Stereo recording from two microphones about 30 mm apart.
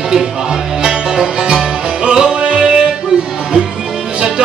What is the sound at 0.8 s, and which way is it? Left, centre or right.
Music, right.